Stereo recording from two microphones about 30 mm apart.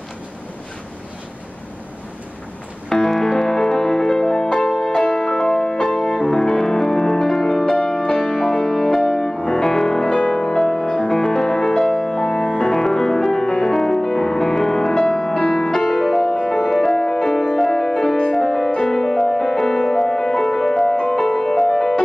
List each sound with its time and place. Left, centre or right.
2.9 s music: centre
4.6 s music: left; by 7.7 s centre
8.1 s music: left
8.4 s music: centre
10.2 s music: left
15.3 s music: left
15.7 s music: centre
20.9 s music: left
21.2 s music: centre